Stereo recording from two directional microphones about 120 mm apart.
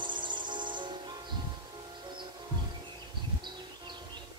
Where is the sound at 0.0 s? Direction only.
40° right (ahead or behind).